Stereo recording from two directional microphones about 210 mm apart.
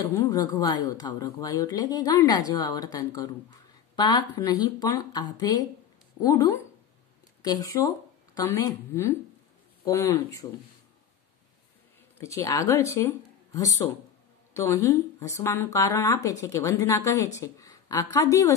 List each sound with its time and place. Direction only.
0.1 s a woman's voice: 15° left (ahead or behind)
8.4 s a woman's voice: 15° left (ahead or behind)
12.2 s a woman's voice: 15° left (ahead or behind)